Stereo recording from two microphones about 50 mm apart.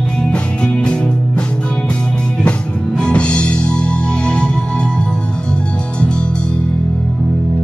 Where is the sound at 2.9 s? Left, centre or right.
Left.